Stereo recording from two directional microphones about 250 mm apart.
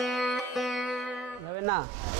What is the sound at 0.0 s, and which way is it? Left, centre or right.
Music, centre.